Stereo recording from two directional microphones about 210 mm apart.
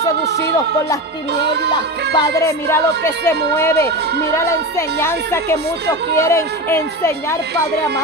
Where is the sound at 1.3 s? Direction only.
50° right (ahead or behind).